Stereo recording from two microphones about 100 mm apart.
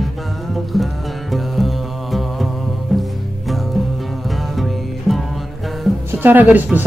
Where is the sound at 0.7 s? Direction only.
Centre (ahead or behind).